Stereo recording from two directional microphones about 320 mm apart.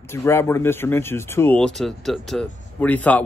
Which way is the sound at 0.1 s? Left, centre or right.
Centre.